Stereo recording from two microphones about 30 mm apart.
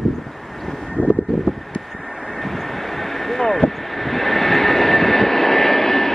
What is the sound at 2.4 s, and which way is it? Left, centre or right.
Vehicle, centre.